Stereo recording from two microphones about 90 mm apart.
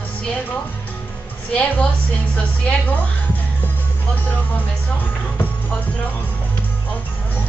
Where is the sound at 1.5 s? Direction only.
15° left (ahead or behind).